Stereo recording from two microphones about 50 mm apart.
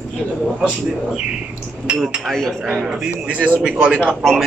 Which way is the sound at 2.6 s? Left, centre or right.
Centre.